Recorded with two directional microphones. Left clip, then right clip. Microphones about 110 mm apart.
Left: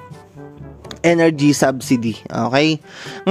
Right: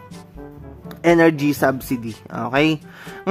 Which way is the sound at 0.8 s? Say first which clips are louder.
Even; 40° left (ahead or behind).